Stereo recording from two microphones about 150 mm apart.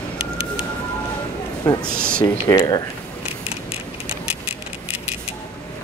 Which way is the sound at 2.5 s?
25° left (ahead or behind).